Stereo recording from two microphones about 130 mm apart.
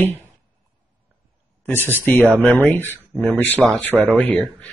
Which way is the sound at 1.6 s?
15° left (ahead or behind).